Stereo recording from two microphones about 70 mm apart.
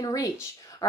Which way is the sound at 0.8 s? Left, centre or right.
Left.